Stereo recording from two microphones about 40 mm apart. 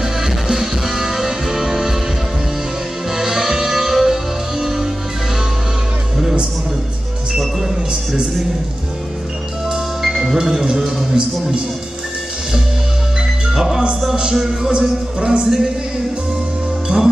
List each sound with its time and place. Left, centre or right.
0.0 s music: centre
3.2 s music: centre
10.0 s music: centre
13.5 s music: centre
14.7 s music: right
16.9 s music: right